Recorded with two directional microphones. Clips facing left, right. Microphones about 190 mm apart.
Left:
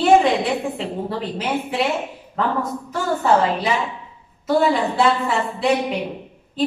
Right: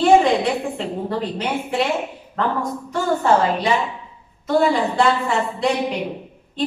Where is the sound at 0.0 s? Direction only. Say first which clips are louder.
Right 1 dB; centre (ahead or behind).